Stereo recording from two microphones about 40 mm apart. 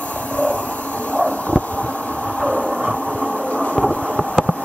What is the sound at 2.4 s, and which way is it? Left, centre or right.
Train, centre.